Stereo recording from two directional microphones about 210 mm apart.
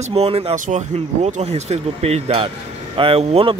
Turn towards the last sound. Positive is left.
turn(degrees=-30)  # may be behind; listen again after turning